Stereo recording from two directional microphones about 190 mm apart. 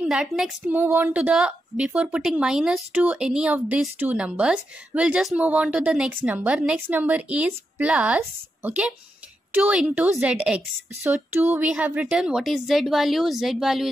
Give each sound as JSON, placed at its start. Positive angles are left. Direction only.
{"t": 0.0, "sound": "a woman's voice", "side_deg": 0}